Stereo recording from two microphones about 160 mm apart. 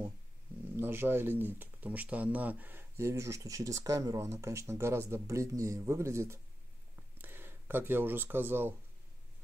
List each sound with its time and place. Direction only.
0.7 s speech: 15° right (ahead or behind)